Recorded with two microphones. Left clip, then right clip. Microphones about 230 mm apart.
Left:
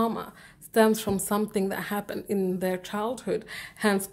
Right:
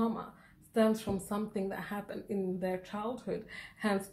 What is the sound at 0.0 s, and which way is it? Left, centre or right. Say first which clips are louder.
A woman's voice: left 7 dB; left.